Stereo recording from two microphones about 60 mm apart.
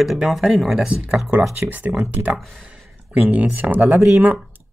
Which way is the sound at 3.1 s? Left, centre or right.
Right.